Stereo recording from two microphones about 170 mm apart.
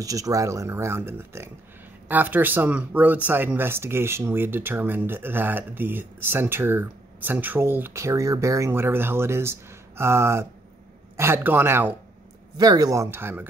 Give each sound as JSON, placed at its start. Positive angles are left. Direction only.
{"t": 0.0, "sound": "speech", "side_deg": -20}
{"t": 12.5, "sound": "speech", "side_deg": -25}